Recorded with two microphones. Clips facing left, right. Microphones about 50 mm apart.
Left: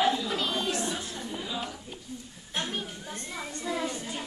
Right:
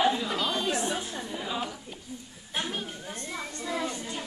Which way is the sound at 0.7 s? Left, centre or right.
Centre.